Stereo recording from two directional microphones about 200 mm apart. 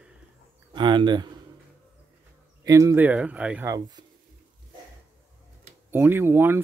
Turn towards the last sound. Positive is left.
turn(degrees=-10)  # may be behind; listen again after turning